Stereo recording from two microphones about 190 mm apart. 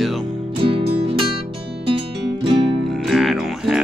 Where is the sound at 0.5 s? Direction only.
25° right (ahead or behind).